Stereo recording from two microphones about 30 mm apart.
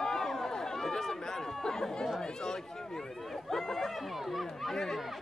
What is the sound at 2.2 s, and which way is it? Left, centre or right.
Speech, left.